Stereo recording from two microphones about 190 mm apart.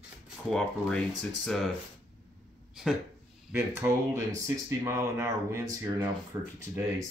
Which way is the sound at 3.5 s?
10° right (ahead or behind).